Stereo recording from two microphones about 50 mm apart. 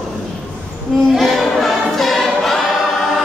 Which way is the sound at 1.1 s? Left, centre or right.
Centre.